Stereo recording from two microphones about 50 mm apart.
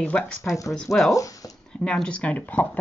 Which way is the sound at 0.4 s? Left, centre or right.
Left.